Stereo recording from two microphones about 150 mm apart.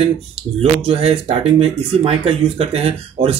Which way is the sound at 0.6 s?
40° right (ahead or behind).